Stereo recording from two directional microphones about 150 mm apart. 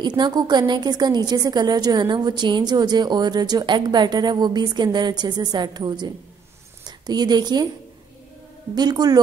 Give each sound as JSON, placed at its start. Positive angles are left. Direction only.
{"t": 0.0, "sound": "a woman's voice", "side_deg": -30}
{"t": 8.7, "sound": "a woman's voice", "side_deg": -25}